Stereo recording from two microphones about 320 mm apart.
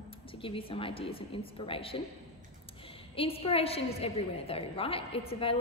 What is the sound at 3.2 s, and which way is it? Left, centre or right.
A woman's voice, centre.